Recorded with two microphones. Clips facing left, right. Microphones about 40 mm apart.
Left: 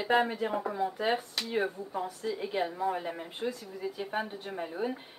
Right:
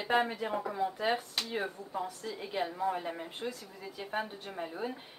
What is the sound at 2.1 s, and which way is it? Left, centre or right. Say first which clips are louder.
A woman's voice: left 6 dB; centre.